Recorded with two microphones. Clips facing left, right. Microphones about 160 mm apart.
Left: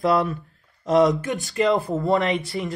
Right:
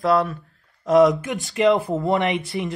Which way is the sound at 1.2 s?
20° right (ahead or behind).